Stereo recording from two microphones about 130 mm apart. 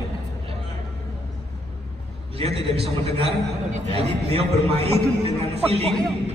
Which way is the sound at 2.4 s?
50° right (ahead or behind).